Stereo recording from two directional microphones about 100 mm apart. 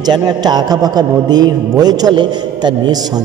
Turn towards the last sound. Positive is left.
turn(degrees=-40)  # may be behind; listen again after turning